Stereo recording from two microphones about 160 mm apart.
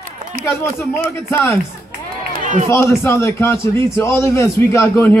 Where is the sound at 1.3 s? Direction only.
15° left (ahead or behind).